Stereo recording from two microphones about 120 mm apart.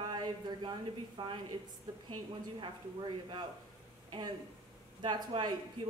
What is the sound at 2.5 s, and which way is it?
Speech, 40° right (ahead or behind).